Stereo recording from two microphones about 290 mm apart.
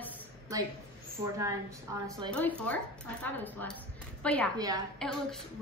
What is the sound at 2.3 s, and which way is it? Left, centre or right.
A woman's voice, centre.